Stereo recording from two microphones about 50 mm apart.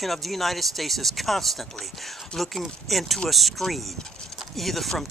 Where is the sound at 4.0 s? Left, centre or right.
Centre.